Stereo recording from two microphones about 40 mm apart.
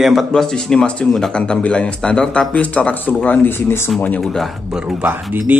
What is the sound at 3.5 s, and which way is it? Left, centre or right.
Speech, left.